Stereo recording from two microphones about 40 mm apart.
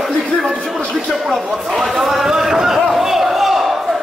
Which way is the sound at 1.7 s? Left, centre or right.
Centre.